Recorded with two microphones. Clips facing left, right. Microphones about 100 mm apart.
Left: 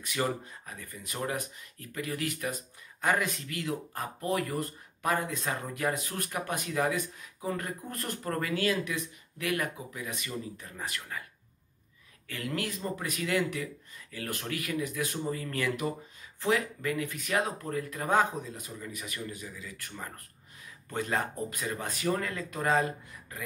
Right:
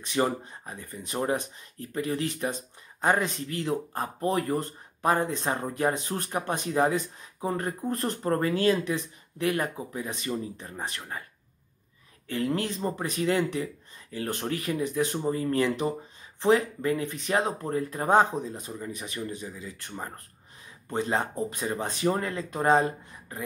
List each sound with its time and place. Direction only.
0.0 s speech: 30° right (ahead or behind)
12.3 s speech: 30° right (ahead or behind)